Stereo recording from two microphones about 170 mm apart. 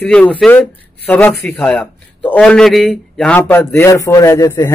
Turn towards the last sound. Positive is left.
turn(degrees=20)  # may be behind; listen again after turning